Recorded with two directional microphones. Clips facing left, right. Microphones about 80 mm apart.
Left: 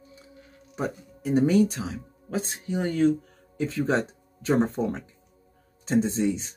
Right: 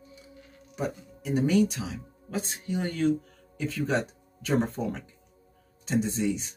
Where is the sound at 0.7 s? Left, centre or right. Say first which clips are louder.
Left 2 dB; left.